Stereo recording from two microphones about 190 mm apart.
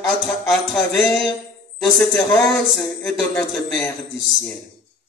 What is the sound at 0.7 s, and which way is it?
Speech, centre (ahead or behind).